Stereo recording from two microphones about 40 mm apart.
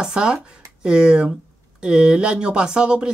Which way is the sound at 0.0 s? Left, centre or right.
Centre.